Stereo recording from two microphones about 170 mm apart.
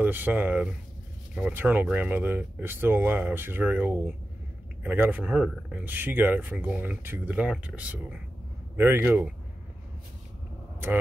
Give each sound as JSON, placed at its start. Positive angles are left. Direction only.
{"t": 0.0, "sound": "speech", "side_deg": -10}